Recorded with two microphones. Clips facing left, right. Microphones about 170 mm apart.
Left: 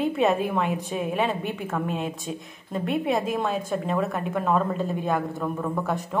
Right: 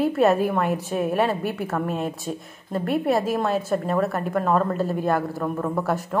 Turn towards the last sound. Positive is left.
turn(degrees=0)  # may be behind; listen again after turning